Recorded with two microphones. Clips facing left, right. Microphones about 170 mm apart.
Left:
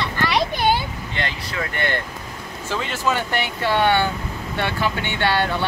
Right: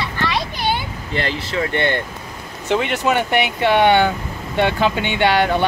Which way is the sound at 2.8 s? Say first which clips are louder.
Right 4 dB; 65° right (ahead or behind).